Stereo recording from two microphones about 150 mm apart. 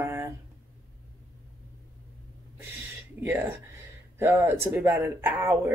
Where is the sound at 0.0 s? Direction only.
15° right (ahead or behind).